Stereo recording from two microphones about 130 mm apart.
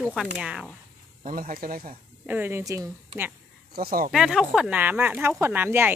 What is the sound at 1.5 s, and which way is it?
Speech, 90° right.